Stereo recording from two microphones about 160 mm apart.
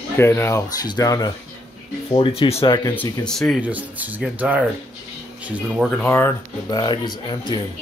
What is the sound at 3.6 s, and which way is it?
Speech, 10° right (ahead or behind).